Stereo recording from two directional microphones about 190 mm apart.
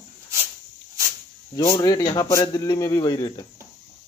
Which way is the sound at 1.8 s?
20° left (ahead or behind).